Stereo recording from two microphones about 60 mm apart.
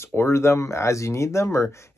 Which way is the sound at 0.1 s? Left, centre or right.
Left.